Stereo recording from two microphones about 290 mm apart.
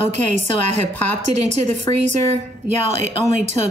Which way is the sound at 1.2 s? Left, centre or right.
Right.